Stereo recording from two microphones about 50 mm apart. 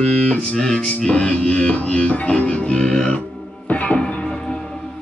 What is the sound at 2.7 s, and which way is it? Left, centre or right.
Music, centre.